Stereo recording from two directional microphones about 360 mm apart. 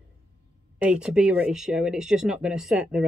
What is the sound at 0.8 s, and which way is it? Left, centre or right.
Speech, centre.